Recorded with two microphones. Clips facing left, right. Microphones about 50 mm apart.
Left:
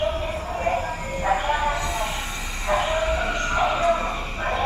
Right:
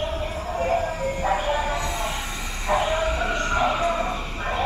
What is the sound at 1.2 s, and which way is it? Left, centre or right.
Train, centre.